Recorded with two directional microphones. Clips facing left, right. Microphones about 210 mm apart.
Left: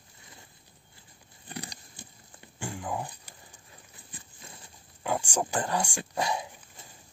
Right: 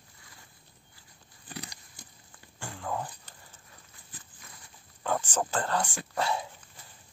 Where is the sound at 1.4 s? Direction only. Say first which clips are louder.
Left 2 dB; 25° left (ahead or behind).